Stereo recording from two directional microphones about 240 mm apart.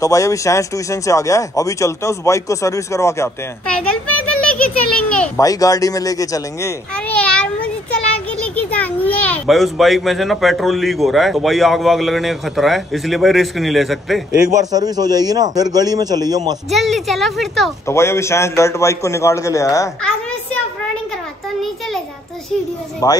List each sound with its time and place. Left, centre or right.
0.0 s speech: centre
4.5 s a sound: centre
5.4 s speech: centre
8.5 s a child's voice: centre
14.7 s a man's voice: centre
16.7 s a child's voice: centre
17.8 s speech: centre
23.0 s speech: centre